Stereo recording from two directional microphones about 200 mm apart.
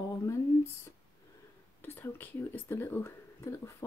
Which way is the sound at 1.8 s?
10° left (ahead or behind).